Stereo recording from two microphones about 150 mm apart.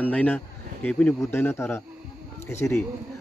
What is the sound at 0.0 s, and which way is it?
Speech, 10° left (ahead or behind).